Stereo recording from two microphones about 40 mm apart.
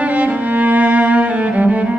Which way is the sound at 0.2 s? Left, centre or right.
Right.